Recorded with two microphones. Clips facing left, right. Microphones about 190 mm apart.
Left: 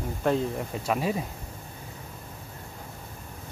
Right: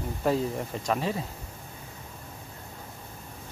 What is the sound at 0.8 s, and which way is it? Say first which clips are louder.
Speech: left 2 dB; 10° left (ahead or behind).